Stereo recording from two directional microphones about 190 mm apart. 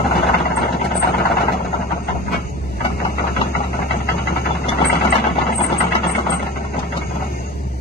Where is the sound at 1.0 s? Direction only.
55° left (ahead or behind).